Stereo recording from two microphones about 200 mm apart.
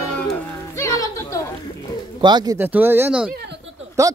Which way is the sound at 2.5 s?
10° right (ahead or behind).